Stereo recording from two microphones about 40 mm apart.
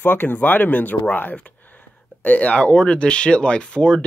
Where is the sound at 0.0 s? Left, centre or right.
Left.